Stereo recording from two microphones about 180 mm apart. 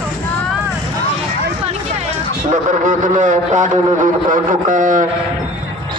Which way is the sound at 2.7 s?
45° right (ahead or behind).